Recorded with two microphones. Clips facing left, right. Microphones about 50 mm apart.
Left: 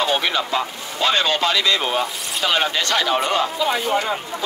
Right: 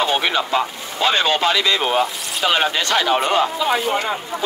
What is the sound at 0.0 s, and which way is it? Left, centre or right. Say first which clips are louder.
Speech: right 1 dB; right.